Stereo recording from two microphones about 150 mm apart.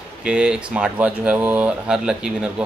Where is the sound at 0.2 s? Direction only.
5° right (ahead or behind).